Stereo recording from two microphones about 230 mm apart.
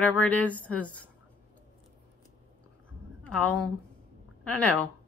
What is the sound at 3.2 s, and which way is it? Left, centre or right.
A woman's voice, centre.